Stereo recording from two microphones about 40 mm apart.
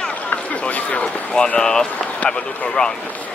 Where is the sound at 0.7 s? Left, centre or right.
Left.